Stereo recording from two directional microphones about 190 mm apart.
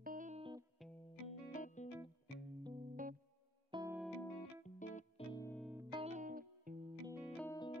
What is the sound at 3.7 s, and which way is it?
Music, 20° right (ahead or behind).